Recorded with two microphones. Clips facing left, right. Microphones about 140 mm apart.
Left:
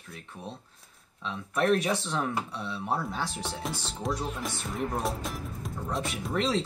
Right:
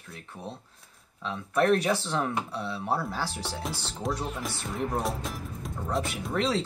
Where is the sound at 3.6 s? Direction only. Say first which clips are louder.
Right 2 dB; centre (ahead or behind).